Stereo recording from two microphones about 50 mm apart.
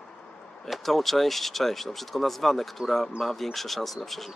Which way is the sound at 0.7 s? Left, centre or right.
Centre.